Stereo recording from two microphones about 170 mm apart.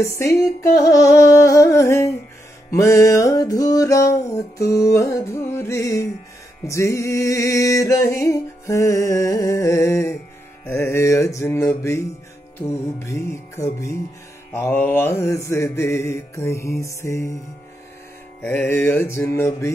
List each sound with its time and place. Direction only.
0.0 s music: 15° left (ahead or behind)
14.5 s music: 10° left (ahead or behind)
18.4 s music: 10° left (ahead or behind)